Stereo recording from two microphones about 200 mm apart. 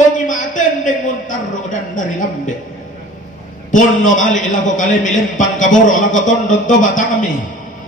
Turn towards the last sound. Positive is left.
turn(degrees=40)  # may be behind; listen again after turning